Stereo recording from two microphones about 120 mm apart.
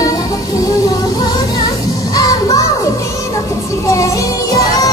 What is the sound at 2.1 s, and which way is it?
Music, 30° left (ahead or behind).